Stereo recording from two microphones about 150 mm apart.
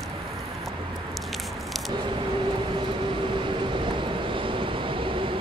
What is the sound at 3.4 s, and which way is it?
Vehicle, 35° right (ahead or behind).